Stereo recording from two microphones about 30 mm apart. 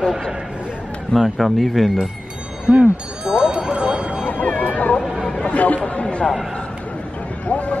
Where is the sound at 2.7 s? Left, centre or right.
Right.